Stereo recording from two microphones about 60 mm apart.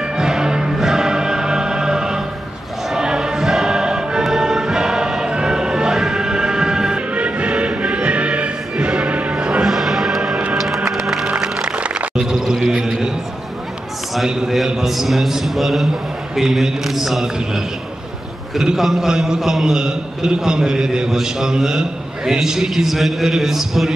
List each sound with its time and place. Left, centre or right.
0.1 s music: centre
9.4 s music: centre
12.2 s a sound: centre
14.1 s a sound: centre
16.3 s a man's voice: centre
18.5 s a man's voice: centre